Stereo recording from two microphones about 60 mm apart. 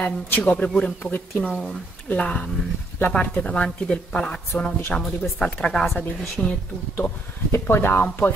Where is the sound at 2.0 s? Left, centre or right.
Centre.